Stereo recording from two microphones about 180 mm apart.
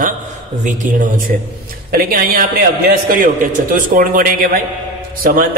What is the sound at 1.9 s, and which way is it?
A man's voice, 55° right (ahead or behind).